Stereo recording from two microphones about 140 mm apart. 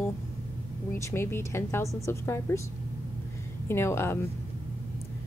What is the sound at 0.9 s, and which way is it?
Speech, 20° left (ahead or behind).